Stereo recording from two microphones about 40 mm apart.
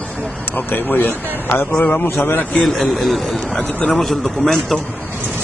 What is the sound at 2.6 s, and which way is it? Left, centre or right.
A man's voice, centre.